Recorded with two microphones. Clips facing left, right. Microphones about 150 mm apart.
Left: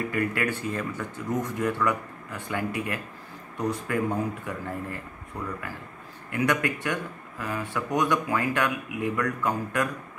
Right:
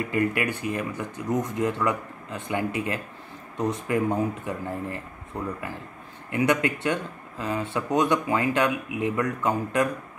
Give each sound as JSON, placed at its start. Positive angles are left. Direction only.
{"t": 0.1, "sound": "speech", "side_deg": -20}